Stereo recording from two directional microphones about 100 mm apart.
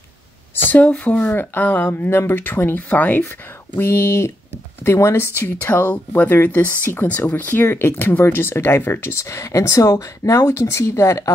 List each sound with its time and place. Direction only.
0.7 s speech: 15° left (ahead or behind); by 11.3 s 30° left (ahead or behind)